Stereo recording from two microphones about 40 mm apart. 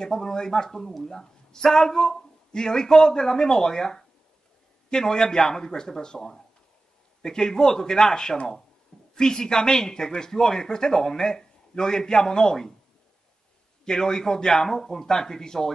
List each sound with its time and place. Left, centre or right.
0.0 s speech: centre
13.8 s speech: centre